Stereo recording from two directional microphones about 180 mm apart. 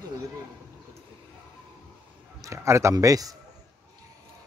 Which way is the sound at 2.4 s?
15° right (ahead or behind).